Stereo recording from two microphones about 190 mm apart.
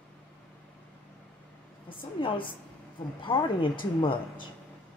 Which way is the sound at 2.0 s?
25° left (ahead or behind).